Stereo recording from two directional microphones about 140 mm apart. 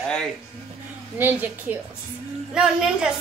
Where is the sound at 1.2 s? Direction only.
15° right (ahead or behind).